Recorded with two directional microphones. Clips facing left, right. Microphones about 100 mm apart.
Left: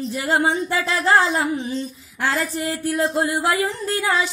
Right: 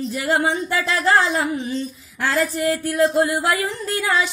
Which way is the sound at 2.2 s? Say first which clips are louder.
Right 2 dB; 20° left (ahead or behind).